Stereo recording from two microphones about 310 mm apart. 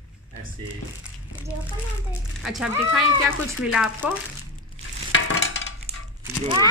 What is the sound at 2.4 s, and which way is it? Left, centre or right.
Speech, centre.